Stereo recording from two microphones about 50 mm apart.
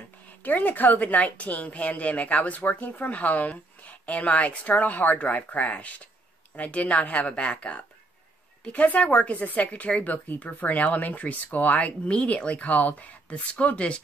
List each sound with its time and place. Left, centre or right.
0.4 s a woman's voice: left